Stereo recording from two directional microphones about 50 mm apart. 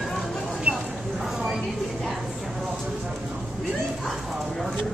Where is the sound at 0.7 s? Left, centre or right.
Right.